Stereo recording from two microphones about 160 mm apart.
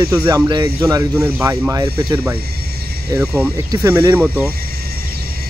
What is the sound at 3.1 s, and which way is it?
Speech, 10° right (ahead or behind).